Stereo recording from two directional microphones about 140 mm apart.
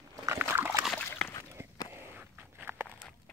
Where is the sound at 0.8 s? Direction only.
10° left (ahead or behind).